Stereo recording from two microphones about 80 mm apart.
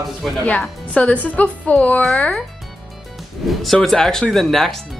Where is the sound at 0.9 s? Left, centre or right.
Centre.